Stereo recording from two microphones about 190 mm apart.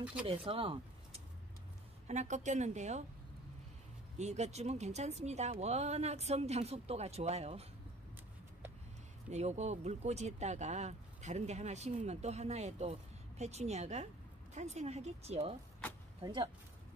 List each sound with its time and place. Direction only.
0.3 s speech: 30° right (ahead or behind)
4.2 s speech: 35° right (ahead or behind)
9.3 s speech: 35° right (ahead or behind)